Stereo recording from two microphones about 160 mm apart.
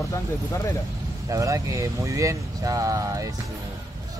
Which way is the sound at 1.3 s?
20° right (ahead or behind).